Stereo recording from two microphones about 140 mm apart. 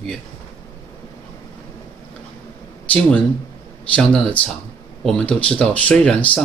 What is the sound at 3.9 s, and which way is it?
Speech, 10° left (ahead or behind).